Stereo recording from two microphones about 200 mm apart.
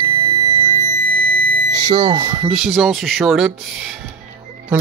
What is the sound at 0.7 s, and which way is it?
Music, 45° right (ahead or behind).